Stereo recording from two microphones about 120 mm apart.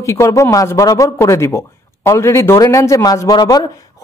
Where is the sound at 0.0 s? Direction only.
25° left (ahead or behind).